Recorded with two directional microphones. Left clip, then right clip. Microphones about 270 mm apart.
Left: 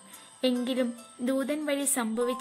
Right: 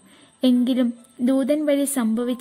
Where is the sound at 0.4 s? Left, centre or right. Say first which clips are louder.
Right 7 dB; right.